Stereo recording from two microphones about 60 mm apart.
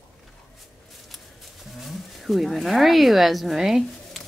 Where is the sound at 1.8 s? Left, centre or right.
Centre.